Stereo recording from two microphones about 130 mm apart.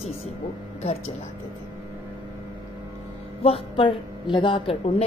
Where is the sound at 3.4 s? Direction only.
45° left (ahead or behind).